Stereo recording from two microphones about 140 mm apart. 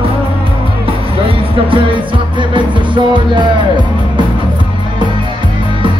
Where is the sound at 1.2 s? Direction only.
40° right (ahead or behind).